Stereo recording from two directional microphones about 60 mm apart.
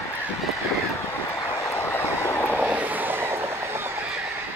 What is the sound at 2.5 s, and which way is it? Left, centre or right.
Vehicle, right.